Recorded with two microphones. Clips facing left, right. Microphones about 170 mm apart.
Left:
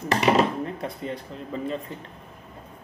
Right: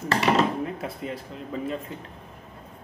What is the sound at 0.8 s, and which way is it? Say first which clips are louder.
Speech: left 1 dB; 5° right (ahead or behind).